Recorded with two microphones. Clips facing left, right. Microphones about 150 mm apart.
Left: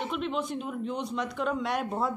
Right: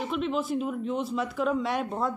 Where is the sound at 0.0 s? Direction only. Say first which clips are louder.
Right 2 dB; centre (ahead or behind).